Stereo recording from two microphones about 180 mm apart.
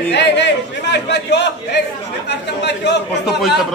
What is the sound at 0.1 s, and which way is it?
Speech, 70° left (ahead or behind).